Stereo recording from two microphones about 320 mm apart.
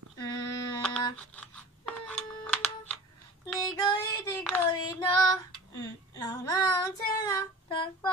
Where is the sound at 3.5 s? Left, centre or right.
Centre.